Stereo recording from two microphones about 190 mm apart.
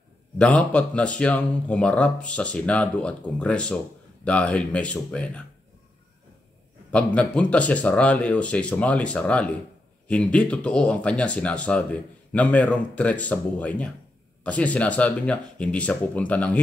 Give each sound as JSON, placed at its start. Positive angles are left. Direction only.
{"t": 0.4, "sound": "speech", "side_deg": 5}
{"t": 6.9, "sound": "speech", "side_deg": 5}